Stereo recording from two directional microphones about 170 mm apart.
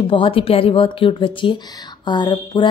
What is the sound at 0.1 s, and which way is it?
A woman's voice, 30° left (ahead or behind).